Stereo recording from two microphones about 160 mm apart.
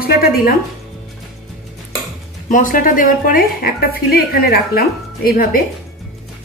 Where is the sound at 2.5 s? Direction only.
55° left (ahead or behind).